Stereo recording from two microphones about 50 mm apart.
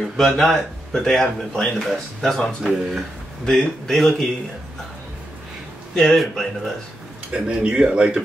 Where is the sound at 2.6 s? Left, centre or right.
Centre.